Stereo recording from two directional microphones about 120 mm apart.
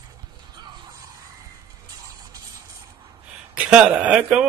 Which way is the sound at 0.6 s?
35° right (ahead or behind).